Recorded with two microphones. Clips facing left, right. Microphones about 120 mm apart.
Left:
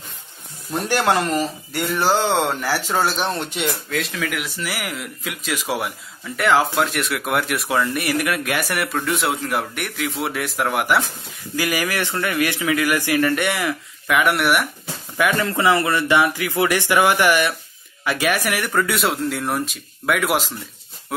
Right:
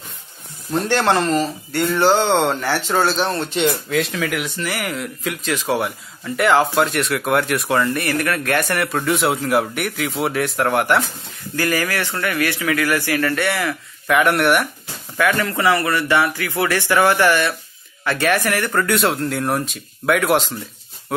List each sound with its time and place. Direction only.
0.7 s speech: 10° left (ahead or behind)
2.0 s speech: centre (ahead or behind)
3.6 s speech: centre (ahead or behind); by 13.7 s 15° left (ahead or behind)
14.0 s speech: centre (ahead or behind)
15.1 s speech: 20° left (ahead or behind); by 20.5 s centre (ahead or behind)